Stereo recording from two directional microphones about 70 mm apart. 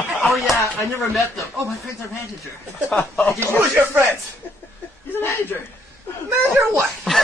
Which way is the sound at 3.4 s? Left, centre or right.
Right.